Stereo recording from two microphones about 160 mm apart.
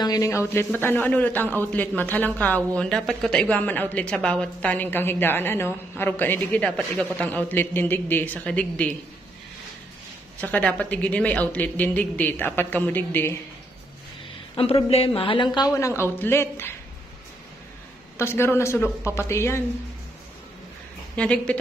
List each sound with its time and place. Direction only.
0.0 s a man's voice: 20° left (ahead or behind)
10.4 s a man's voice: 10° left (ahead or behind)
14.5 s speech: 35° left (ahead or behind); by 16.7 s 15° left (ahead or behind)
18.1 s a man's voice: 15° left (ahead or behind)
21.2 s a woman's voice: 5° left (ahead or behind)